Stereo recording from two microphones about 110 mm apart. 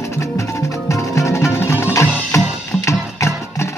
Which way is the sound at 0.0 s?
25° left (ahead or behind).